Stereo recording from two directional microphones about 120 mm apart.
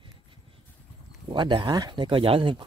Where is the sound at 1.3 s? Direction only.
45° right (ahead or behind).